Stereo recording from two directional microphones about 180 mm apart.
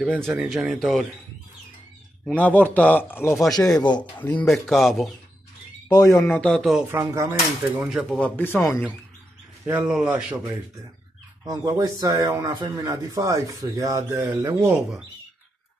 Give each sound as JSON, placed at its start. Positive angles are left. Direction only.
{"t": 0.0, "sound": "speech", "side_deg": 0}
{"t": 2.2, "sound": "a man's voice", "side_deg": 10}
{"t": 4.2, "sound": "speech", "side_deg": 10}
{"t": 5.9, "sound": "a man's voice", "side_deg": 15}
{"t": 6.9, "sound": "speech", "side_deg": -15}
{"t": 8.4, "sound": "a man's voice", "side_deg": 10}
{"t": 9.7, "sound": "speech", "side_deg": -5}
{"t": 11.4, "sound": "speech", "side_deg": -20}